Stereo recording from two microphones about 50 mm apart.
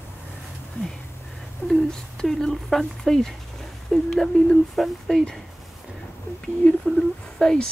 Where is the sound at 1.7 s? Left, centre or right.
Centre.